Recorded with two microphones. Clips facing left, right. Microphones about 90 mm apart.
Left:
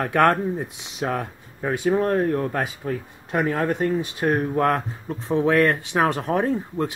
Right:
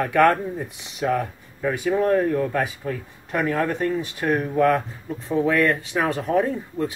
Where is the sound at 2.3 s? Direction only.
40° left (ahead or behind).